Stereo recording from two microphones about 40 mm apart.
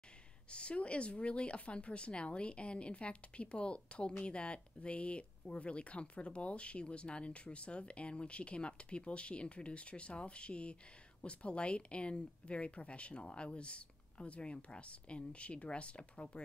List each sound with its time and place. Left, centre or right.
0.5 s speech: left